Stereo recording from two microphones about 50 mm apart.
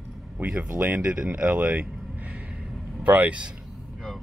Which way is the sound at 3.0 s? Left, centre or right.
Right.